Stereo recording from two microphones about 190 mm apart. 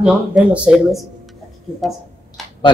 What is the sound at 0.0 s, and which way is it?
Speech, 5° right (ahead or behind).